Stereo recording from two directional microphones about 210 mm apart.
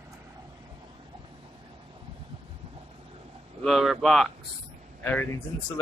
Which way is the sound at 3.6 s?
Centre (ahead or behind).